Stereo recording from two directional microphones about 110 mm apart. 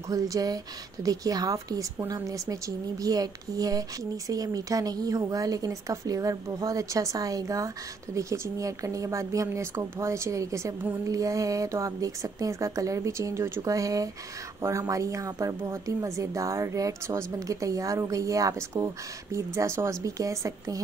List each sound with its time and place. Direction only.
0.1 s a woman's voice: 35° right (ahead or behind)